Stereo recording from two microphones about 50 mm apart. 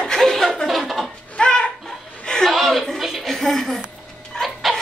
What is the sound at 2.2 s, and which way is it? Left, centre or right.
Chuckle, centre.